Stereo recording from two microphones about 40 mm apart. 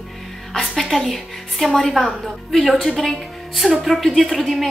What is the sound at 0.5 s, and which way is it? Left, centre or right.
A woman's voice, centre.